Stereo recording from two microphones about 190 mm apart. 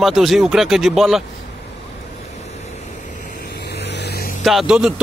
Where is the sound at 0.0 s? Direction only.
Centre (ahead or behind).